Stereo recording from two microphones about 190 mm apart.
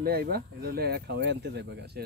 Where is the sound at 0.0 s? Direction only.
55° right (ahead or behind).